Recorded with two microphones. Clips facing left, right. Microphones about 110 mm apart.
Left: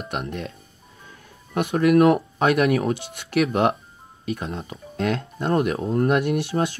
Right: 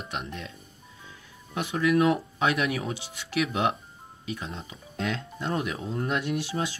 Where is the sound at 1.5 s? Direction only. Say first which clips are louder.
Left 7 dB; 55° left (ahead or behind).